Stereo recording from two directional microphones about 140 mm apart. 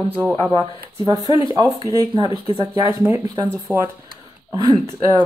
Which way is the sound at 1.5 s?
30° right (ahead or behind).